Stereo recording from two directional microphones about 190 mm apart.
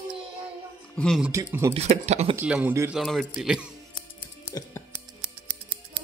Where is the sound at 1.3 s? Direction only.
15° right (ahead or behind).